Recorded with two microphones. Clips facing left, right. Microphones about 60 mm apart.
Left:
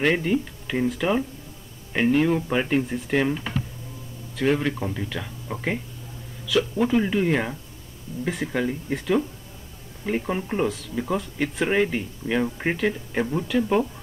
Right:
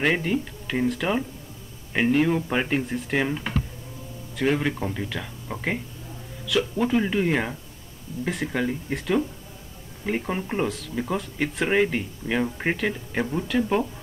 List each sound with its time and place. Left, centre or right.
0.0 s speech: centre
4.4 s speech: centre